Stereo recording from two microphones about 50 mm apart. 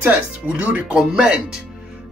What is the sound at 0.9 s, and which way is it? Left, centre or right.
Speech, centre.